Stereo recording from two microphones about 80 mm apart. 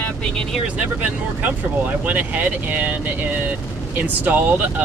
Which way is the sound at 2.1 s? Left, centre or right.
Centre.